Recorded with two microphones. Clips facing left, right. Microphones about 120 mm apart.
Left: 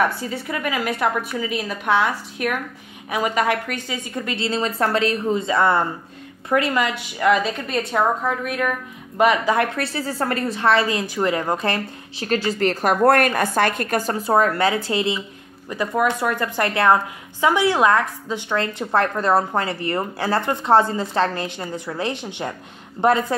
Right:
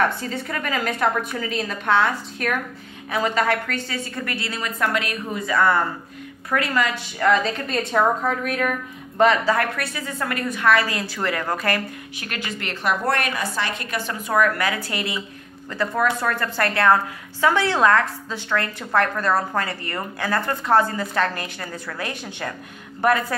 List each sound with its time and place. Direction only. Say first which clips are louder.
0.0 s a woman's voice: left 1 dB; 10° left (ahead or behind)
9.2 s a woman's voice: left 1 dB; 15° left (ahead or behind)
9.8 s a woman's voice: left 4 dB; 30° left (ahead or behind)